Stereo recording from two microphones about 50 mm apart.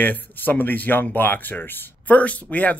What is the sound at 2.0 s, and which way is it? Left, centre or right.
Speech, left.